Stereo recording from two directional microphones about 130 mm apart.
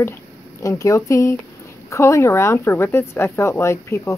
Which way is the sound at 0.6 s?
25° left (ahead or behind).